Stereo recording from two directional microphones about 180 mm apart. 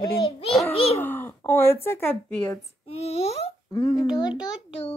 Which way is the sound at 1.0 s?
10° left (ahead or behind).